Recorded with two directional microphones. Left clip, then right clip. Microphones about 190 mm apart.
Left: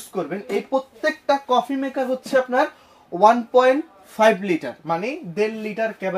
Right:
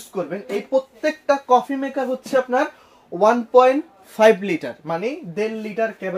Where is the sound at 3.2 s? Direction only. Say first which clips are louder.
Right 1 dB; 30° right (ahead or behind).